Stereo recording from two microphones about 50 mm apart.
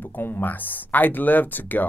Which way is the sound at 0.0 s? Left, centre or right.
Left.